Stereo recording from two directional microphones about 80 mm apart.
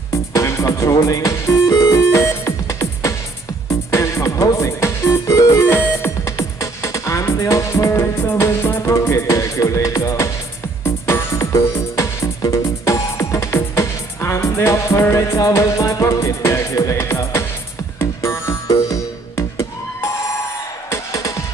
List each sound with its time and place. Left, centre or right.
0.3 s music: left
2.0 s music: left
5.7 s music: left